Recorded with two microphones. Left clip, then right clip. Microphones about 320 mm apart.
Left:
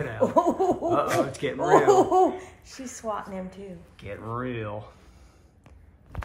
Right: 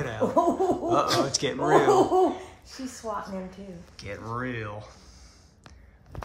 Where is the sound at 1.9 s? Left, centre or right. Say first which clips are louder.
Left 2 dB; left.